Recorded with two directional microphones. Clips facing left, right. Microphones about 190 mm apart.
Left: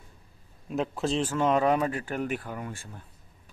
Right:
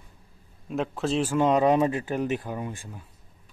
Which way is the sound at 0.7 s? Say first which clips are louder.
Right 1 dB; centre (ahead or behind).